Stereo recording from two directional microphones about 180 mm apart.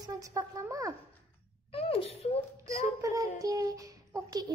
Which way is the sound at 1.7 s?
30° left (ahead or behind).